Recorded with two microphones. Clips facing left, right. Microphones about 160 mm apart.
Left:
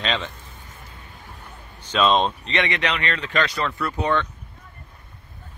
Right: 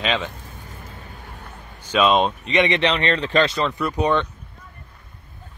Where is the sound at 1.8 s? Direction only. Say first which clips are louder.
Right 2 dB; 10° right (ahead or behind).